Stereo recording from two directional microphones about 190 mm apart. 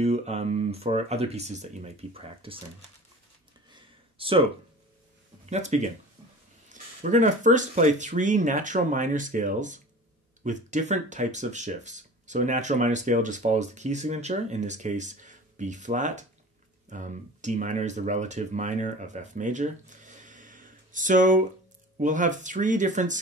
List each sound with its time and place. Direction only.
0.0 s speech: 35° right (ahead or behind)
3.7 s a sound: 30° right (ahead or behind)
5.5 s speech: 35° right (ahead or behind)